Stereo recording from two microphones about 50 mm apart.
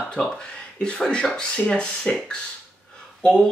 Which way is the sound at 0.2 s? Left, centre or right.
Left.